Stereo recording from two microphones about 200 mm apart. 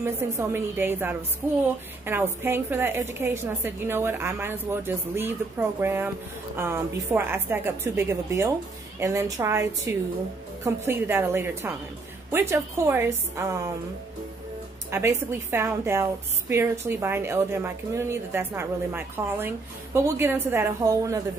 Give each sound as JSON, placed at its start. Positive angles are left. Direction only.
{"t": 0.0, "sound": "a woman's voice", "side_deg": -10}
{"t": 14.9, "sound": "a woman's voice", "side_deg": -15}